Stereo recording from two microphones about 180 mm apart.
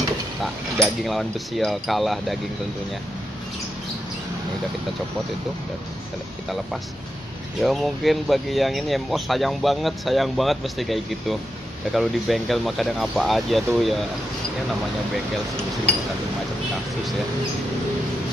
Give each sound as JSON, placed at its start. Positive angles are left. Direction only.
{"t": 0.4, "sound": "speech", "side_deg": 0}
{"t": 7.6, "sound": "speech", "side_deg": 0}